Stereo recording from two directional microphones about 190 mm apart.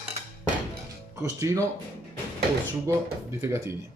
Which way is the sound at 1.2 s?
15° right (ahead or behind).